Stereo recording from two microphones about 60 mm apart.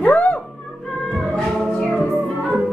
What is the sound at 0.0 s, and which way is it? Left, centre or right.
Music, left.